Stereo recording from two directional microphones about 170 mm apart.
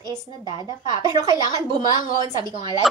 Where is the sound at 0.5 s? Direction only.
25° right (ahead or behind).